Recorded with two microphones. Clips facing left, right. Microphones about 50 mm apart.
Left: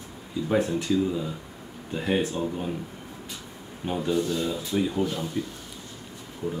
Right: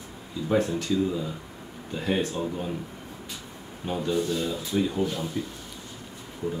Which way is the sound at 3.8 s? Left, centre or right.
Centre.